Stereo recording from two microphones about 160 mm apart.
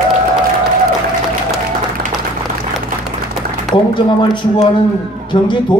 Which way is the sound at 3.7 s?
30° left (ahead or behind).